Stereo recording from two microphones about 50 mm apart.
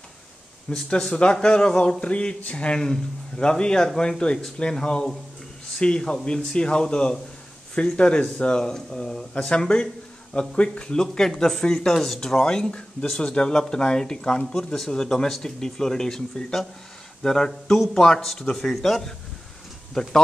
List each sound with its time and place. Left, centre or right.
0.7 s speech: centre